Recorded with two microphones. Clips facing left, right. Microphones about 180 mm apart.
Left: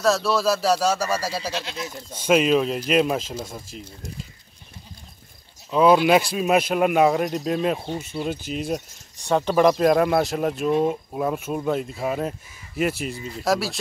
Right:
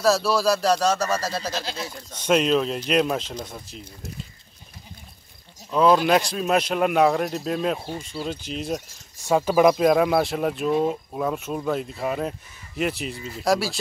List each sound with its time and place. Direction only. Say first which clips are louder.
0.0 s speech: even; centre (ahead or behind)
1.5 s speech: even; 35° right (ahead or behind)
2.1 s speech: left 2 dB; 5° left (ahead or behind)
5.7 s speech: left 2 dB; 5° left (ahead or behind)